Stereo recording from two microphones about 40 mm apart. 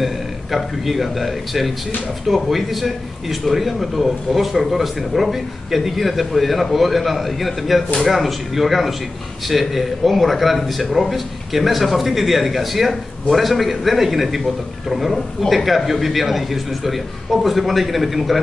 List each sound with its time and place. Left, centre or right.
0.0 s a man's voice: centre